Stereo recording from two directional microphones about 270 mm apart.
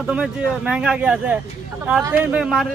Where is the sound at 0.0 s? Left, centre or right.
Centre.